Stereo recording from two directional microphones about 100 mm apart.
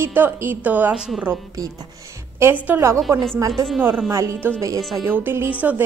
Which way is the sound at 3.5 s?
5° left (ahead or behind).